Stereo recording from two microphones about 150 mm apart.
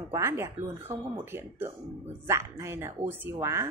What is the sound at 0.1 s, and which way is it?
A woman's voice, 20° right (ahead or behind).